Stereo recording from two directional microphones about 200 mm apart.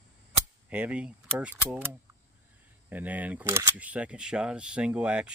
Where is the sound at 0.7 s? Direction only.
5° right (ahead or behind).